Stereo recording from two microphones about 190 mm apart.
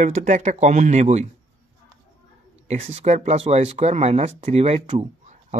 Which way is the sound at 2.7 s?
35° right (ahead or behind).